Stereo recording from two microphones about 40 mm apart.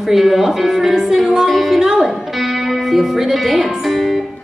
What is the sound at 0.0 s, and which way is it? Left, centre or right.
Speech, centre.